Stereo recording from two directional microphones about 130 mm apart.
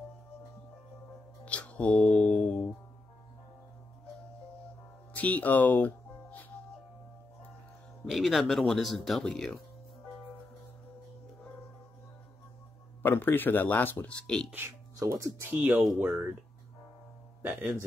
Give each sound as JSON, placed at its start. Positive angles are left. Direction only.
{"t": 1.4, "sound": "music", "side_deg": 10}
{"t": 5.1, "sound": "music", "side_deg": 10}
{"t": 8.1, "sound": "speech", "side_deg": 0}
{"t": 13.0, "sound": "speech", "side_deg": 15}
{"t": 14.5, "sound": "speech", "side_deg": -20}
{"t": 17.4, "sound": "speech", "side_deg": -15}